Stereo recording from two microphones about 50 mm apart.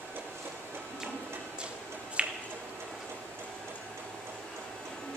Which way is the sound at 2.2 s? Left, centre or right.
Right.